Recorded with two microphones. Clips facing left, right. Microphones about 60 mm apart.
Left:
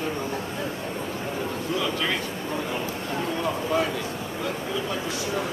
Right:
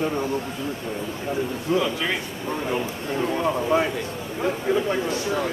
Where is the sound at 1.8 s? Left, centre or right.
Centre.